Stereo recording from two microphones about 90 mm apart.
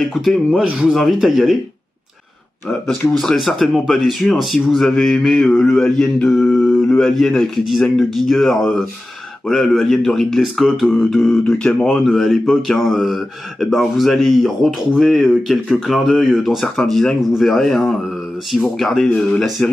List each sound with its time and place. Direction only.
0.0 s speech: centre (ahead or behind)
2.9 s speech: 5° left (ahead or behind)
6.6 s mantra: 25° left (ahead or behind)
7.0 s speech: 5° left (ahead or behind)